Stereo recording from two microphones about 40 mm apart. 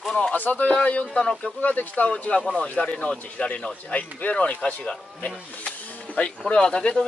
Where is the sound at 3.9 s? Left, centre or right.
Left.